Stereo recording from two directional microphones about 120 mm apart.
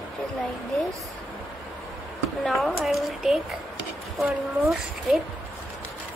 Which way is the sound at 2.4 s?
Centre (ahead or behind).